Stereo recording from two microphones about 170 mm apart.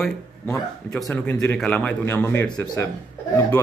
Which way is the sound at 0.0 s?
Centre (ahead or behind).